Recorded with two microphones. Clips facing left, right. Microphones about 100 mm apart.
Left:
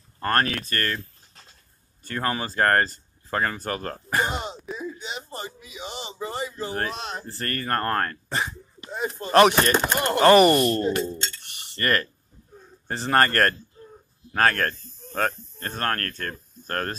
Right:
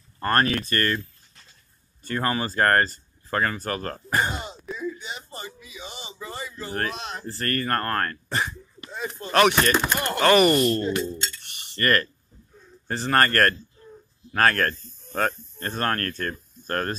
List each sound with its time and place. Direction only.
0.2 s speech: 5° right (ahead or behind)
2.0 s speech: centre (ahead or behind)
4.8 s a sound: 30° left (ahead or behind)
7.3 s speech: 10° left (ahead or behind)
8.8 s a sound: 25° left (ahead or behind)
9.3 s chopping: 30° left (ahead or behind)
11.7 s speech: 15° left (ahead or behind)
14.3 s speech: 5° left (ahead or behind)